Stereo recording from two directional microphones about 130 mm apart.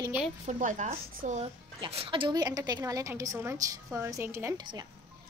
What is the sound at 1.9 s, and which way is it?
A woman's voice, 45° right (ahead or behind).